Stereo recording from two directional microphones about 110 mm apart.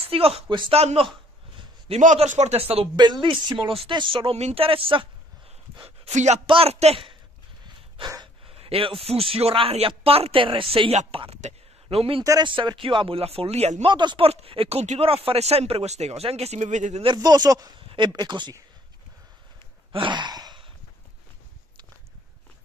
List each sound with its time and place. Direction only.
0.0 s a man's voice: 60° right (ahead or behind)
0.7 s a man's voice: 70° right (ahead or behind)
3.0 s speech: 45° right (ahead or behind)
4.4 s speech: 85° right
4.6 s a man's voice: 55° right (ahead or behind)
5.9 s speech: 85° right
6.4 s a man's voice: 55° right (ahead or behind)
8.5 s a man's voice: 60° right (ahead or behind)
12.2 s speech: 35° right (ahead or behind)
12.4 s a man's voice: 50° right (ahead or behind); by 13.8 s 80° right
13.8 s speech: 45° right (ahead or behind)
14.2 s speech: 60° right (ahead or behind); by 17.0 s 90° right
17.0 s speech: 40° right (ahead or behind)
19.9 s gasp: 50° right (ahead or behind)